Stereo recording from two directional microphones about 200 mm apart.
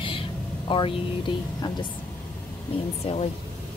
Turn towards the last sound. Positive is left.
turn(degrees=25)  # may be behind; listen again after turning